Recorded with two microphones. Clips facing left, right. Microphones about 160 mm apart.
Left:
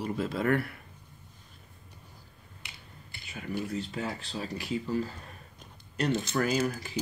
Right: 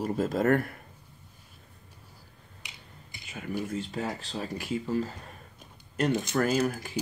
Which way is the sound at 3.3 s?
45° right (ahead or behind).